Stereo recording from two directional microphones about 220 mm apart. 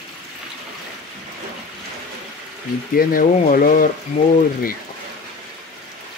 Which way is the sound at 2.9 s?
40° left (ahead or behind).